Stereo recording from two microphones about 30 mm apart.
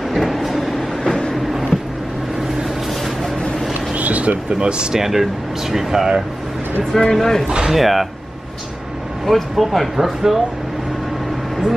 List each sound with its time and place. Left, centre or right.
0.1 s vehicle: centre
1.0 s train: left
3.9 s a sound: right
4.5 s speech: right
4.9 s speech: centre
6.9 s speech: centre
7.4 s speech: right
7.7 s speech: centre
9.2 s speech: centre